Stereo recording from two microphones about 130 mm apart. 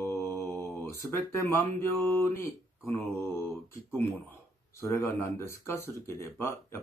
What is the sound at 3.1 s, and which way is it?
Speech, 20° left (ahead or behind).